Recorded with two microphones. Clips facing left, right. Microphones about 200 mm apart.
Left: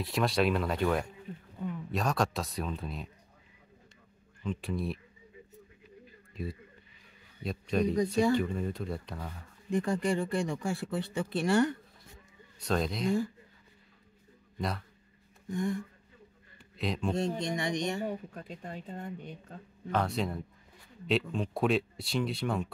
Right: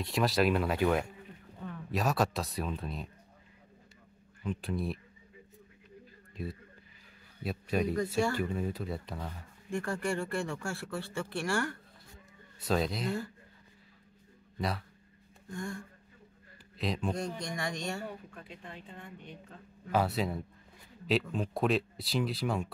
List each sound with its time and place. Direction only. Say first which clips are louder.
0.0 s speech: even; centre (ahead or behind)
4.4 s speech: even; 5° right (ahead or behind)
6.3 s speech: left 1 dB; centre (ahead or behind)
9.7 s speech: left 4 dB; 15° left (ahead or behind)
12.5 s speech: even; 5° right (ahead or behind)
14.6 s speech: even; centre (ahead or behind)
15.4 s a sound: left 7 dB; 20° left (ahead or behind)
16.7 s a man's voice: left 1 dB; centre (ahead or behind)
17.4 s speech: left 5 dB; 20° left (ahead or behind)
18.3 s speech: left 5 dB; 40° left (ahead or behind)
19.9 s speech: right 1 dB; 5° right (ahead or behind)